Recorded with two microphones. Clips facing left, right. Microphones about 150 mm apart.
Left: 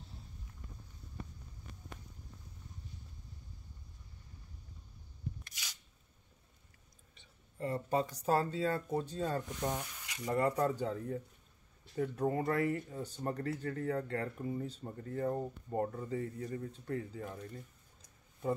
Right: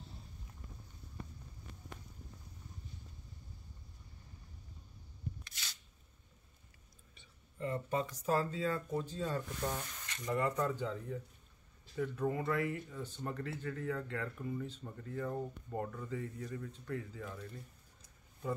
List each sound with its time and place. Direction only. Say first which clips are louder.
5.5 s a sound: even; 10° left (ahead or behind)
7.5 s speech: left 3 dB; 35° left (ahead or behind)
9.5 s speech: left 2 dB; 15° left (ahead or behind)
10.2 s speech: left 3 dB; 35° left (ahead or behind)